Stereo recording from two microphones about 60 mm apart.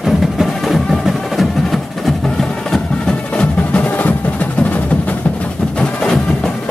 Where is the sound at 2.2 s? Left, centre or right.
Centre; by 4.8 s left.